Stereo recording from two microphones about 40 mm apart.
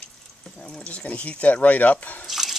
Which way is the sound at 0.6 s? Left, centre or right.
Left.